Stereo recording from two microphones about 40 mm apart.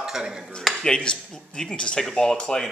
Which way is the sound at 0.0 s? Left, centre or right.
Centre.